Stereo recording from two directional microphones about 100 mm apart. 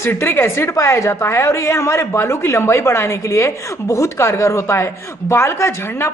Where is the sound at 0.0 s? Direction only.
25° left (ahead or behind).